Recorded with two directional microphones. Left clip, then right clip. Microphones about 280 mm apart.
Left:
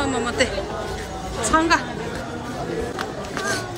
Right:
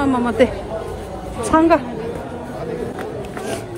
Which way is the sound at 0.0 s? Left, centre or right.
Centre.